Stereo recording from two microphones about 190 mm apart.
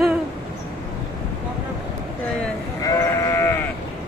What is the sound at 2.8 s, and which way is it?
Sheep, 15° left (ahead or behind).